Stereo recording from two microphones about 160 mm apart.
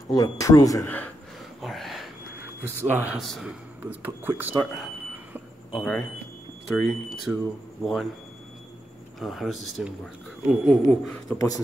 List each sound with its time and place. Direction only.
0.1 s speech: 20° left (ahead or behind)
1.6 s a sound: centre (ahead or behind)
2.8 s speech: 10° right (ahead or behind)
3.2 s speech: centre (ahead or behind)
3.8 s speech: 10° right (ahead or behind)
5.7 s speech: 5° left (ahead or behind)
9.2 s speech: centre (ahead or behind)
11.3 s speech: 20° left (ahead or behind)